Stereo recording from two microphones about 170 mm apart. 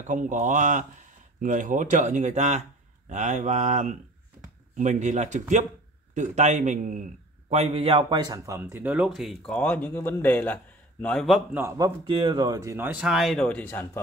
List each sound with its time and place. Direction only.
0.0 s a man's voice: 50° right (ahead or behind); by 8.6 s 20° right (ahead or behind)
8.7 s speech: 10° right (ahead or behind)
11.5 s speech: 15° right (ahead or behind)
12.0 s speech: 30° right (ahead or behind); by 13.8 s 10° left (ahead or behind)